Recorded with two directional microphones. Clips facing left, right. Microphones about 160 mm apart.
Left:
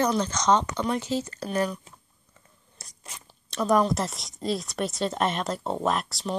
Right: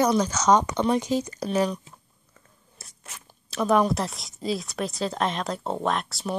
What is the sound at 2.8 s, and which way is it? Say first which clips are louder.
Zipper: even; centre (ahead or behind).